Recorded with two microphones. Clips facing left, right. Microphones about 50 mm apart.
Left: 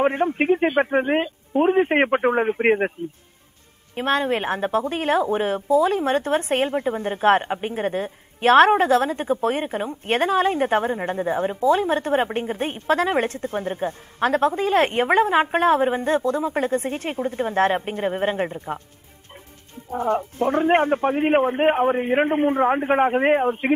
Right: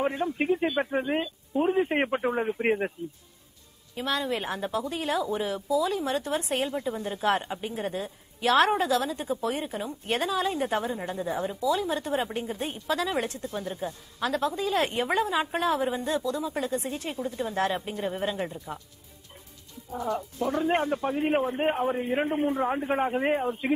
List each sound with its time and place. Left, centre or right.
0.0 s a woman's voice: left
3.9 s a woman's voice: left